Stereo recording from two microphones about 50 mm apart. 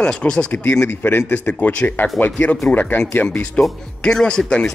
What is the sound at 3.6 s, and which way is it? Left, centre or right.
Speech, left.